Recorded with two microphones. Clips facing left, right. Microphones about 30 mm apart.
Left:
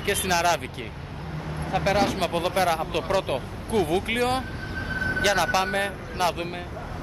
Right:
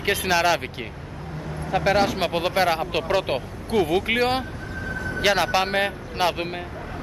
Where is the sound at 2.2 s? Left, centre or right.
Right.